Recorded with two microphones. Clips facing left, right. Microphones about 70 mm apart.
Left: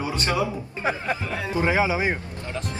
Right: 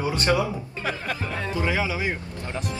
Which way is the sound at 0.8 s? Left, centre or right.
Left.